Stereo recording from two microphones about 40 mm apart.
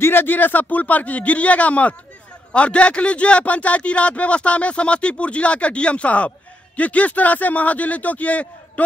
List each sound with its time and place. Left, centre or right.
0.0 s speech: left